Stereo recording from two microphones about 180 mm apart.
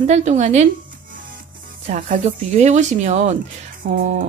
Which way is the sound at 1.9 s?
40° right (ahead or behind).